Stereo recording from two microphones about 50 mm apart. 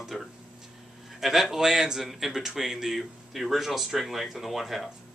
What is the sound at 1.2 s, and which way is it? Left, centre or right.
Speech, centre.